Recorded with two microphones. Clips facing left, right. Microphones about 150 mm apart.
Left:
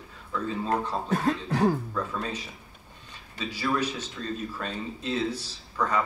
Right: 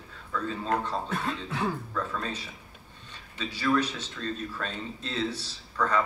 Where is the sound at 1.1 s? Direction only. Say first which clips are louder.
Left 6 dB; 40° left (ahead or behind).